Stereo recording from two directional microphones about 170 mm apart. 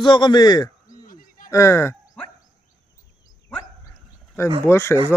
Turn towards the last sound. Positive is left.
turn(degrees=15)  # may be behind; listen again after turning